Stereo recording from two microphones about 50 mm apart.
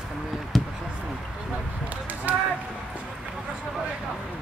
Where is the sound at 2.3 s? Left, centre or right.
Right.